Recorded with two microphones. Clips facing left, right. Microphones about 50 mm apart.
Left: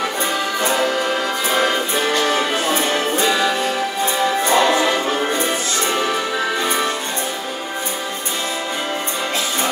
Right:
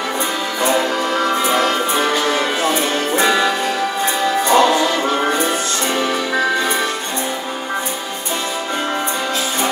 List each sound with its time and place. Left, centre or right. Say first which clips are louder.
3.2 s music: right 5 dB; right
4.6 s music: right 2 dB; left